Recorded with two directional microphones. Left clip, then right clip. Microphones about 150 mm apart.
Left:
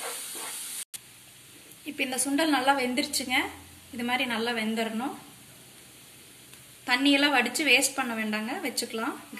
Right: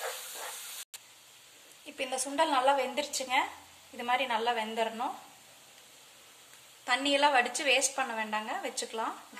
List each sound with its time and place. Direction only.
2.0 s a woman's voice: 65° right (ahead or behind)
6.9 s a woman's voice: 75° right (ahead or behind)